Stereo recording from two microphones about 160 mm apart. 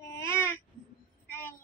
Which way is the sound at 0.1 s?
15° left (ahead or behind).